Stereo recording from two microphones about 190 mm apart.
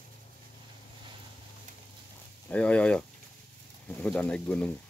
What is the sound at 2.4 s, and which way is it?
Speech, 5° left (ahead or behind).